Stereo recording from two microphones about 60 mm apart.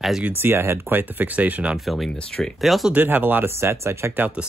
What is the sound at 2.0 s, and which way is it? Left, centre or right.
Speech, centre.